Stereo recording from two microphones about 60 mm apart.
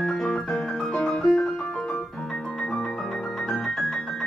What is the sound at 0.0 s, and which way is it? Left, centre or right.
Keyboard, centre.